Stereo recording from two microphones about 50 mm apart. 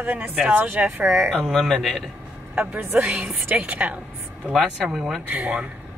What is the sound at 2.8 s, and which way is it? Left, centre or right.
Speech, right.